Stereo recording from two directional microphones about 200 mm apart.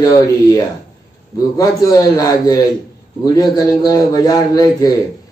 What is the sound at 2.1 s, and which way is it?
A man's voice, 15° left (ahead or behind).